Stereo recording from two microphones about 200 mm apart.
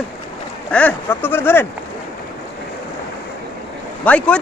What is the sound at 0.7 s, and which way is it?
A man's voice, 10° left (ahead or behind).